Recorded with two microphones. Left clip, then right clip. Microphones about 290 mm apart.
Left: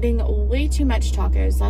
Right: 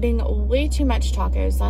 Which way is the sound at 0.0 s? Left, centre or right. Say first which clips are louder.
Even; centre.